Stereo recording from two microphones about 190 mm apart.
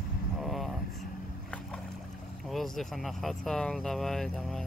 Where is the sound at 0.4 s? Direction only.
Centre (ahead or behind).